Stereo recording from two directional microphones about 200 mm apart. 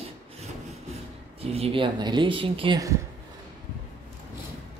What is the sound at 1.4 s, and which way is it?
Speech, 30° right (ahead or behind).